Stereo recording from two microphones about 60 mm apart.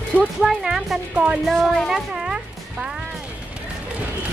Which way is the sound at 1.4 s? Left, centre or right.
Centre.